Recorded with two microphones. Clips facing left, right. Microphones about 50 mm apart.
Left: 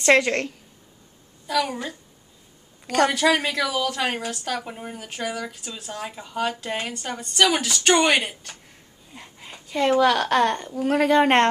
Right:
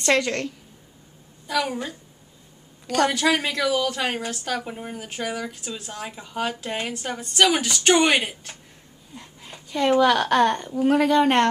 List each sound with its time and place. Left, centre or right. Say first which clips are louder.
0.0 s a woman's voice: left 3 dB; centre
1.5 s speech: left 1 dB; centre
3.1 s speech: left 1 dB; centre
9.1 s a sound: even; centre
9.7 s speech: even; centre
11.0 s speech: left 2 dB; centre